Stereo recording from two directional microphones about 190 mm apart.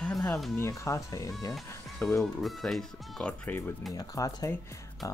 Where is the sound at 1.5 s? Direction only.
5° left (ahead or behind).